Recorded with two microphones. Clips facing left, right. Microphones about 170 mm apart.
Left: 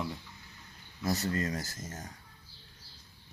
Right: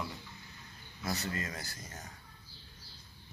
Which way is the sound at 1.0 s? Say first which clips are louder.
Left 6 dB; 40° left (ahead or behind).